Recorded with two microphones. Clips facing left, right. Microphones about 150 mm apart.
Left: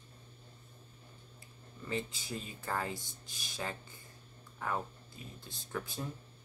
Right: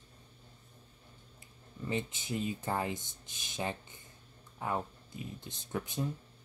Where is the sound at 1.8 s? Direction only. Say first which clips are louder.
Right 2 dB; 20° right (ahead or behind).